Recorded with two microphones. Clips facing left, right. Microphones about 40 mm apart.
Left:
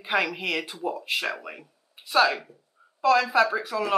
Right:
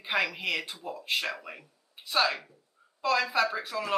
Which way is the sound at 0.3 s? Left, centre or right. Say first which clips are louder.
Left 3 dB; centre.